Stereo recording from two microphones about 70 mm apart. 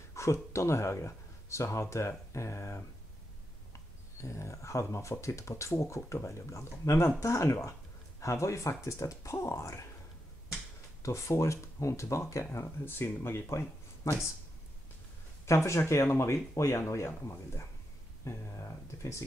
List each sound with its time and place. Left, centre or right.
0.1 s speech: left
4.2 s speech: left
11.0 s speech: left
15.4 s speech: left